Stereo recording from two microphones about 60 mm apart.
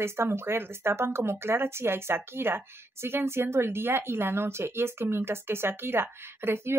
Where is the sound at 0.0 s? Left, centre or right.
Right.